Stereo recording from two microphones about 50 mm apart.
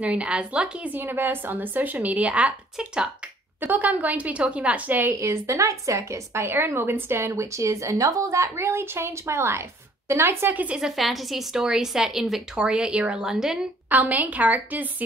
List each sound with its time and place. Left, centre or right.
0.0 s a woman's voice: right
0.9 s a woman's voice: right; by 3.1 s centre
3.6 s a woman's voice: right
5.2 s a woman's voice: right
11.0 s a woman's voice: centre
13.8 s a woman's voice: right